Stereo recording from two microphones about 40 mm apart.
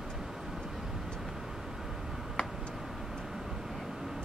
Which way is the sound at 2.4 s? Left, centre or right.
Left.